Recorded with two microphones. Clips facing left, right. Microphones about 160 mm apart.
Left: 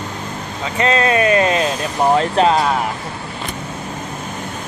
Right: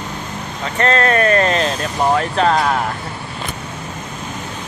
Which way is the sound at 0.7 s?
10° left (ahead or behind).